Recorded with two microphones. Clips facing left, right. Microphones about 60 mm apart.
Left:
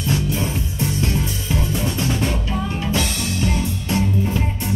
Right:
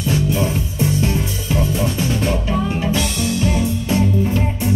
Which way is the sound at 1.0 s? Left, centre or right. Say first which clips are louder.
Right 2 dB; centre.